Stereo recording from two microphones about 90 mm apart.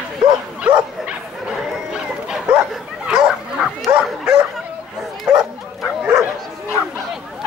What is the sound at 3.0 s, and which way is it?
Bow-wow, 5° right (ahead or behind).